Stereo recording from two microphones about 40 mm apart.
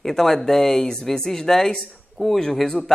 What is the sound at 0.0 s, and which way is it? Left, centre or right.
Speech, centre.